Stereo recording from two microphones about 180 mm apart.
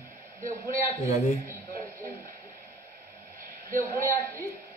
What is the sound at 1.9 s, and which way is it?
Radio, 15° right (ahead or behind).